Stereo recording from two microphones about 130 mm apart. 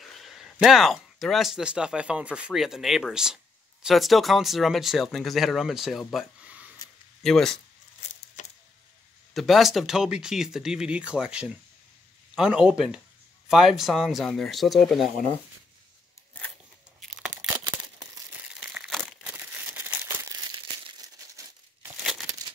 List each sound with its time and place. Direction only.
0.0 s speech: centre (ahead or behind)
7.2 s speech: 5° left (ahead or behind)
8.4 s a sound: 70° left (ahead or behind)
9.3 s speech: centre (ahead or behind)
17.0 s tearing: 5° right (ahead or behind)
17.4 s a sound: 15° right (ahead or behind)
18.6 s crumpling: 5° right (ahead or behind)
19.3 s crumpling: 15° right (ahead or behind)
20.2 s crumpling: 35° right (ahead or behind)